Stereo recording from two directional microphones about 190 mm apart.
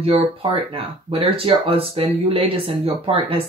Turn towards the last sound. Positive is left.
turn(degrees=-30)  # may be behind; listen again after turning